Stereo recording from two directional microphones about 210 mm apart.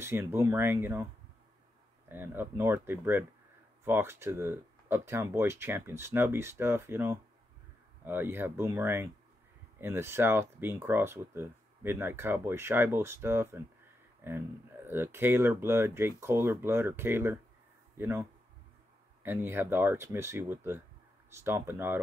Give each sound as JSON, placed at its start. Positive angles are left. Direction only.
{"t": 0.0, "sound": "speech", "side_deg": -10}
{"t": 2.0, "sound": "speech", "side_deg": -10}
{"t": 19.2, "sound": "speech", "side_deg": -10}